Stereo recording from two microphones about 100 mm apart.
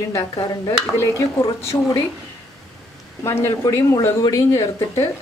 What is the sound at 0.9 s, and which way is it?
Speech, 25° left (ahead or behind).